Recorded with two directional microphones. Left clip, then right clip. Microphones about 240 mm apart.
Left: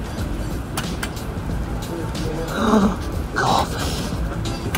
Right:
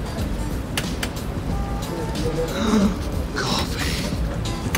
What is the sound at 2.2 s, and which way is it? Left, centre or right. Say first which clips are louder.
Music: even; centre.